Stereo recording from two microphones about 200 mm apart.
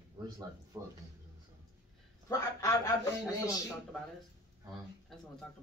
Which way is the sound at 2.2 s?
15° left (ahead or behind).